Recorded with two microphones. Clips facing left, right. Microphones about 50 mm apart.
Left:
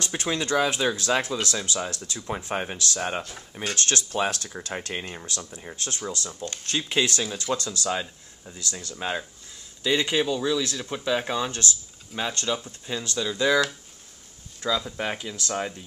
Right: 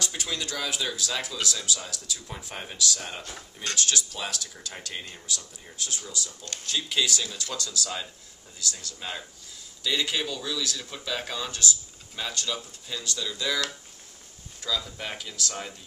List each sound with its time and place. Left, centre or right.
0.0 s speech: left
5.2 s speech: left
6.7 s speech: left
14.6 s speech: left